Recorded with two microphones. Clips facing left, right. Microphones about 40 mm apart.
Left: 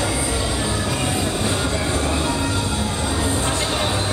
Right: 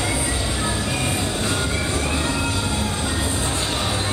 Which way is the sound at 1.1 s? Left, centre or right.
Left.